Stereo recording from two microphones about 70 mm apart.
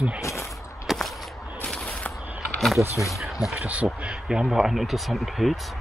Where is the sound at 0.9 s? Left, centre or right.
Centre.